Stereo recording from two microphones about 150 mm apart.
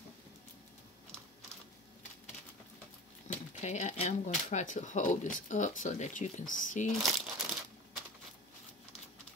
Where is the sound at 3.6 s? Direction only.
50° left (ahead or behind).